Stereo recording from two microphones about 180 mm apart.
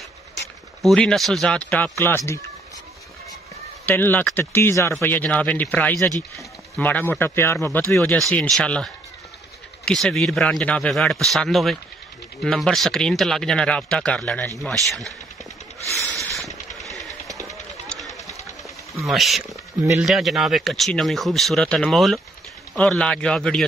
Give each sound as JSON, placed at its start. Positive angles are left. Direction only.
{"t": 0.8, "sound": "speech", "side_deg": 0}
{"t": 3.8, "sound": "speech", "side_deg": 10}
{"t": 16.8, "sound": "jackhammer", "side_deg": 0}
{"t": 17.3, "sound": "a sound", "side_deg": -20}
{"t": 17.8, "sound": "run", "side_deg": 0}
{"t": 18.9, "sound": "speech", "side_deg": 0}